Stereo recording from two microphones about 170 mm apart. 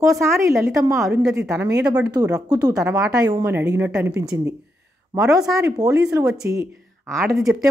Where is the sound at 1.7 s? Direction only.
20° right (ahead or behind).